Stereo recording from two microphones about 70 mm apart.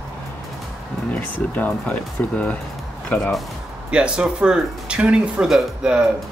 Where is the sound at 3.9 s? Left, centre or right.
Centre.